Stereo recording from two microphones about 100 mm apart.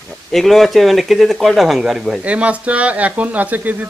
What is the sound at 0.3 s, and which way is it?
Speech, centre (ahead or behind).